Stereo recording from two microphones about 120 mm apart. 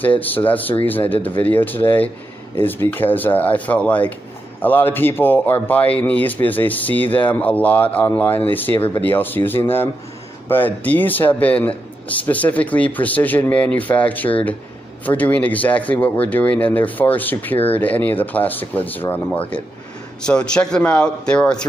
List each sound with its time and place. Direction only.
0.2 s speech: 15° left (ahead or behind)